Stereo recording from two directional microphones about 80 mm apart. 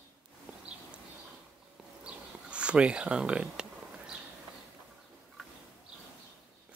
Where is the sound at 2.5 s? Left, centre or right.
Centre.